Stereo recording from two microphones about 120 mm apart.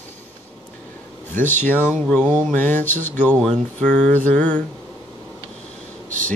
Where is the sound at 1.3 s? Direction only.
15° left (ahead or behind).